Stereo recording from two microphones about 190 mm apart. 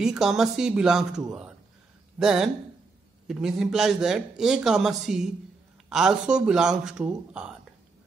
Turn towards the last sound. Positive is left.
turn(degrees=-5)  # may be behind; listen again after turning